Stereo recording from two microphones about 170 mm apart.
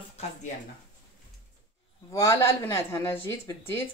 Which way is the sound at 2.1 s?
15° left (ahead or behind).